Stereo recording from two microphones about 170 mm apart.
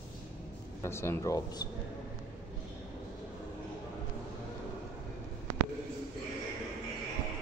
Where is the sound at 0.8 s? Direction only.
15° left (ahead or behind).